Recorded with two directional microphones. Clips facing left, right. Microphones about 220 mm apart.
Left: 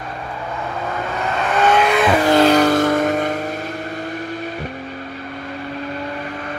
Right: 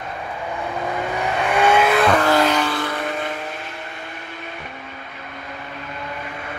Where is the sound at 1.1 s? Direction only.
15° right (ahead or behind).